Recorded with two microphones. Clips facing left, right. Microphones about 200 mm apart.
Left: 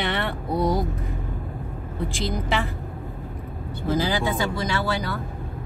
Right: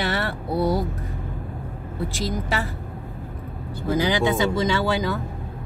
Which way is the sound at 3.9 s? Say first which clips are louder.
Right 3 dB; 20° right (ahead or behind).